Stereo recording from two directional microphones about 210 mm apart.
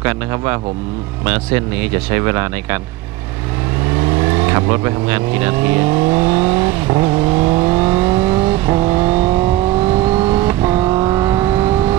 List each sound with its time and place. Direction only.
1.2 s speech: 10° right (ahead or behind)
4.5 s speech: 10° right (ahead or behind)
7.0 s vehicle: 25° right (ahead or behind)
7.7 s vehicle: 10° right (ahead or behind)
9.1 s vehicle: 25° right (ahead or behind)
10.5 s vehicle: 10° right (ahead or behind)
10.8 s vehicle: 20° right (ahead or behind)